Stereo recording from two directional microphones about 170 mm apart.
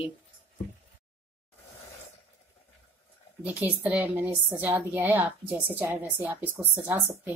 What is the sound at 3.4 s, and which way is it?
A woman's voice, 10° right (ahead or behind).